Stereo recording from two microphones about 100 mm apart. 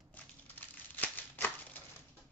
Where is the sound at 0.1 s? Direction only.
15° left (ahead or behind).